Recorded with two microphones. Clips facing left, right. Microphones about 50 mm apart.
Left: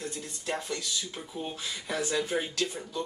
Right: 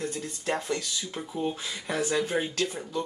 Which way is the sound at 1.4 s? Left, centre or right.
Right.